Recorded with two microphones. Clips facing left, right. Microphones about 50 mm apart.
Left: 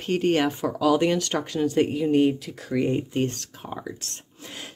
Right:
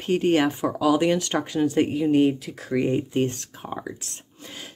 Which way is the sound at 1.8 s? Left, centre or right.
Centre.